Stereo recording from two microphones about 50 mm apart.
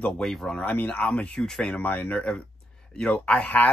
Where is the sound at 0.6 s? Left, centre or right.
Left; by 1.8 s centre.